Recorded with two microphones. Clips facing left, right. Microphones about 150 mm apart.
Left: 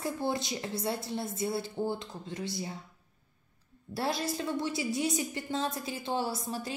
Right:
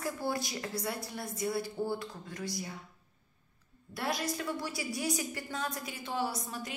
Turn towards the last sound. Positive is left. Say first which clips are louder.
# left 3 dB
turn(degrees=30)  # may be behind; listen again after turning